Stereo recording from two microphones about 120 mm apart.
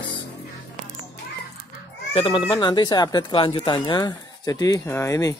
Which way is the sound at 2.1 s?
45° left (ahead or behind).